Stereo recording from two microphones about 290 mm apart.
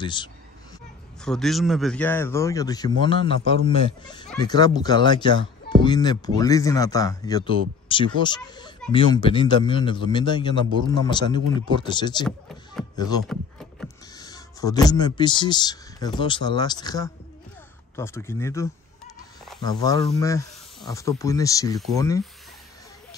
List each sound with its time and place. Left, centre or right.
0.0 s speech: centre
1.2 s a man's voice: centre